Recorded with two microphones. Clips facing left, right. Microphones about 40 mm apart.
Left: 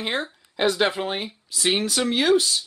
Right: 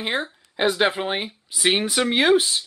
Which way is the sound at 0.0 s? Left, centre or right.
Centre.